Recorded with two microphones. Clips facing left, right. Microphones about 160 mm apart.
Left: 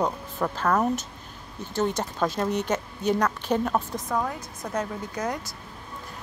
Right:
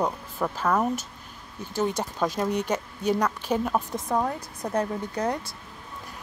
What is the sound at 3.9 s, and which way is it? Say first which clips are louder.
Speech: right 2 dB; 30° right (ahead or behind).